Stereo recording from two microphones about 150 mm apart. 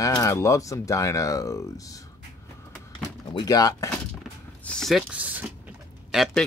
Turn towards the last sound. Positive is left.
turn(degrees=0)  # may be behind; listen again after turning